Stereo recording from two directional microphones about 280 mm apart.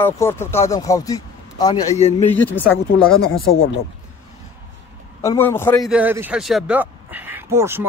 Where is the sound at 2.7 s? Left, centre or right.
Left.